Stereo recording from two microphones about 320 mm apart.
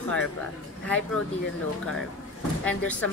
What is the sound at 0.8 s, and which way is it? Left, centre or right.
Speech, centre.